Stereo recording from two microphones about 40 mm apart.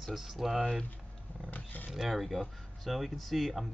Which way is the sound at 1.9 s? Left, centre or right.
Centre.